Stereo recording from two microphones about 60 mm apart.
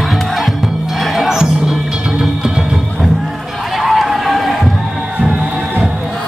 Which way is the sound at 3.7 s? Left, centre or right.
Centre.